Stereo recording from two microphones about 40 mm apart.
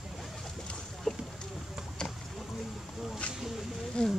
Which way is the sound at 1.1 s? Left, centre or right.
Centre.